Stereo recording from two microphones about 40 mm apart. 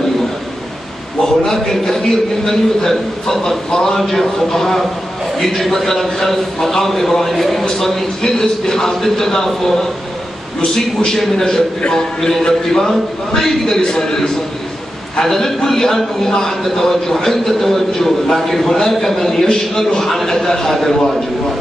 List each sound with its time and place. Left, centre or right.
1.4 s a man's voice: centre
13.7 s a man's voice: centre